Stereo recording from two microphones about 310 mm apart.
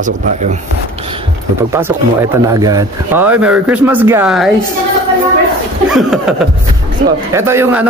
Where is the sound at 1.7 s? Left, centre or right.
Centre.